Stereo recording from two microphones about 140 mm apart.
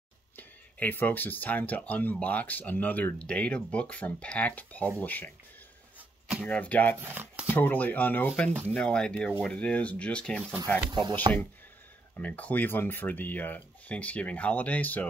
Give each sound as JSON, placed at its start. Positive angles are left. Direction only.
{"t": 0.4, "sound": "speech", "side_deg": 10}
{"t": 6.4, "sound": "speech", "side_deg": 10}
{"t": 7.0, "sound": "speech", "side_deg": -15}
{"t": 7.4, "sound": "speech", "side_deg": 10}
{"t": 10.9, "sound": "speech", "side_deg": -30}
{"t": 12.2, "sound": "speech", "side_deg": 10}